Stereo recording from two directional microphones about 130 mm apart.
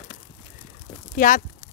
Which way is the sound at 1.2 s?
90° left.